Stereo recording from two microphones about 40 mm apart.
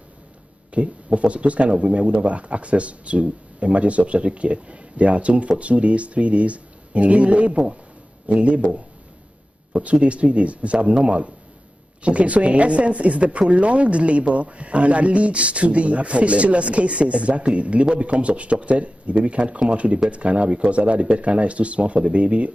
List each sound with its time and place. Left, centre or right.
0.7 s speech: right